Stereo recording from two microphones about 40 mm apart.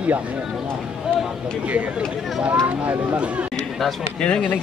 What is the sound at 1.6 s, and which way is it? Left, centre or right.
Speech, right.